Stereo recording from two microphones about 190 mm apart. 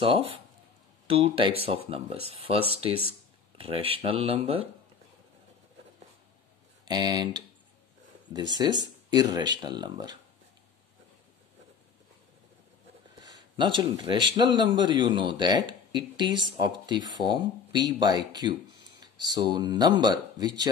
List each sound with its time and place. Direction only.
0.0 s speech: 30° right (ahead or behind)
6.9 s speech: 20° right (ahead or behind)
8.5 s speech: 20° right (ahead or behind)
13.2 s speech: 20° right (ahead or behind)